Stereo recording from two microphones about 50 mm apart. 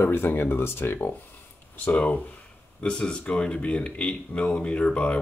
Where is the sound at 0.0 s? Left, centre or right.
Left.